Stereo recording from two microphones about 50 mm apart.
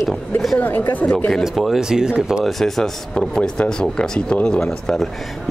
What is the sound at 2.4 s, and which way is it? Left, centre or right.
Speech, centre.